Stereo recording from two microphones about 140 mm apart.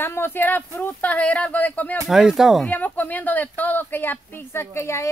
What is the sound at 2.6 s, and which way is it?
Speech, 10° left (ahead or behind).